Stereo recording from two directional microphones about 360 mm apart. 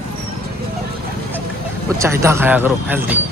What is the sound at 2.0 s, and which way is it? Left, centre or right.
Speech, centre.